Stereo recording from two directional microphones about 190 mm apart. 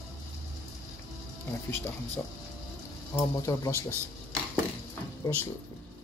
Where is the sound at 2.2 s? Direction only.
5° left (ahead or behind).